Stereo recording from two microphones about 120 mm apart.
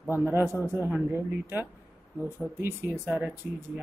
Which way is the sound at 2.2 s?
20° right (ahead or behind).